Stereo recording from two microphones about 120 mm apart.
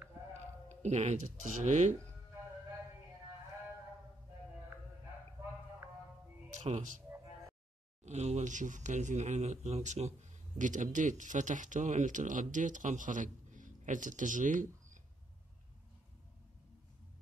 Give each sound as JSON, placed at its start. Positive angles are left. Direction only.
{"t": 0.3, "sound": "speech", "side_deg": -70}
{"t": 6.6, "sound": "speech", "side_deg": -80}
{"t": 8.0, "sound": "speech", "side_deg": -70}
{"t": 10.6, "sound": "speech", "side_deg": -90}